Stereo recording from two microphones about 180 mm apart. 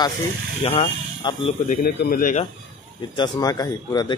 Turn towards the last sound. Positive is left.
turn(degrees=20)  # may be behind; listen again after turning